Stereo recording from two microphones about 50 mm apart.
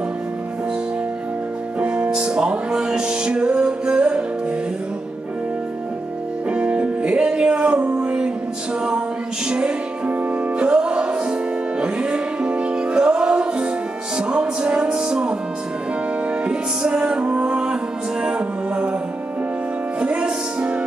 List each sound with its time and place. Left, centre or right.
1.8 s music: right
6.5 s music: right
9.5 s music: right
16.4 s music: right
20.0 s music: right